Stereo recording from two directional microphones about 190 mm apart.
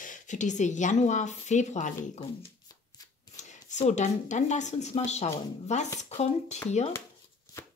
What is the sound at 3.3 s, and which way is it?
A woman's voice, 40° left (ahead or behind).